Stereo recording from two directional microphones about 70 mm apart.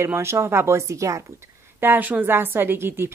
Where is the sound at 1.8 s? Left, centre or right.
Right.